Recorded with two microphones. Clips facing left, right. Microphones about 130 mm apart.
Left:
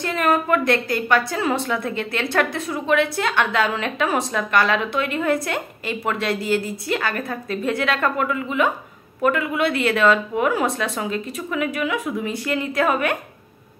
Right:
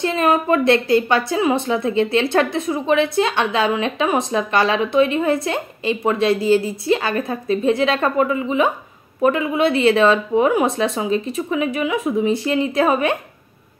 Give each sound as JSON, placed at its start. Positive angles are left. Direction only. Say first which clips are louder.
{"t": 0.0, "sound": "a woman's voice", "louder": "right 3 dB", "side_deg": -25}